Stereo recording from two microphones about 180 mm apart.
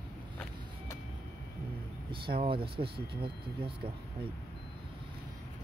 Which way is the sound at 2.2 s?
30° right (ahead or behind).